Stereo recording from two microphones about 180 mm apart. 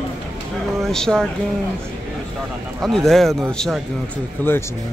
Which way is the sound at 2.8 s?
Centre (ahead or behind).